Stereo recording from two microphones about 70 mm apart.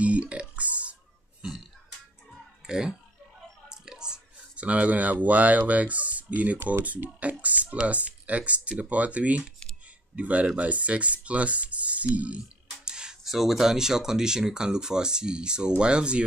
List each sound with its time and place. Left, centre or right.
0.0 s burping: centre
2.6 s speech: centre